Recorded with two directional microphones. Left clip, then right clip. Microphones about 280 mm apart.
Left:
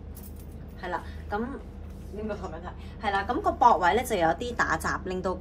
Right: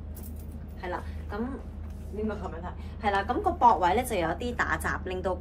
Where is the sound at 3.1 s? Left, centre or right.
Centre.